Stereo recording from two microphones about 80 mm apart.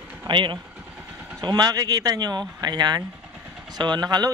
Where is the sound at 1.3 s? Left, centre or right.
Right.